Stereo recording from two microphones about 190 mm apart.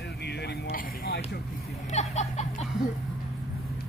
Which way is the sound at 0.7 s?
50° left (ahead or behind).